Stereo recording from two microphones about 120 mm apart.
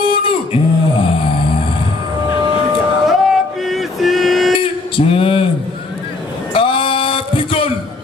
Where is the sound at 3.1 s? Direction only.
Centre (ahead or behind).